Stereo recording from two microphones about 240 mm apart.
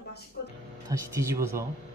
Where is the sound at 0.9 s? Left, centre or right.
Centre.